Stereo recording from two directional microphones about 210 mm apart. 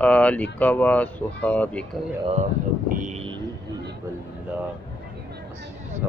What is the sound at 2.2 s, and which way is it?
Speech, 30° right (ahead or behind).